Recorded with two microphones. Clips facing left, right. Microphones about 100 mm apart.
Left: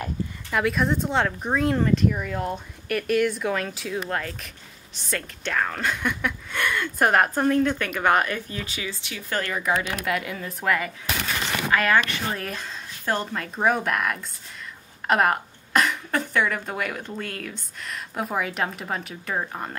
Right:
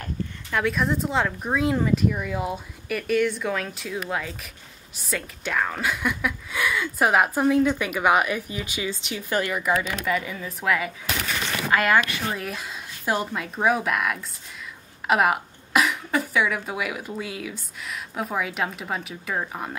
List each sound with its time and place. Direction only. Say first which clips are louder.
0.5 s a woman's voice: left 1 dB; centre (ahead or behind)
11.7 s speech: right 1 dB; 20° right (ahead or behind)
12.0 s speech: even; 5° right (ahead or behind)